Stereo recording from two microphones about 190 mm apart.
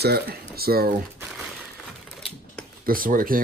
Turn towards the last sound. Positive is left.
turn(degrees=-45)  # may be behind; listen again after turning